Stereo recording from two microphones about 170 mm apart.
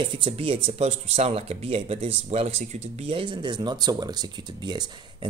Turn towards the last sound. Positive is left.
turn(degrees=-25)  # may be behind; listen again after turning